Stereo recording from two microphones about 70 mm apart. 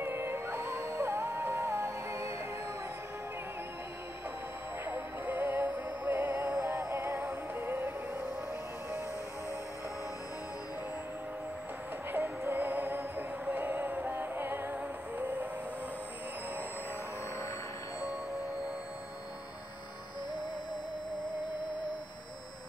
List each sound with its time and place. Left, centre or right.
0.0 s music: right
4.8 s music: right
12.1 s music: right